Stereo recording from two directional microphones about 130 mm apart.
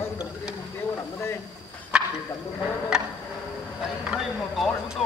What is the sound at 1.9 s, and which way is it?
Bow-wow, 5° right (ahead or behind).